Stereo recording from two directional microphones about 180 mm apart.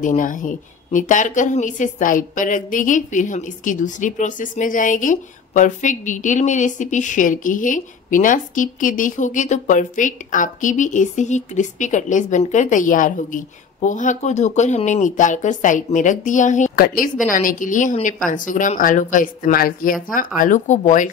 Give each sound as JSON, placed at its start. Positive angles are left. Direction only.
{"t": 0.0, "sound": "a woman's voice", "side_deg": 45}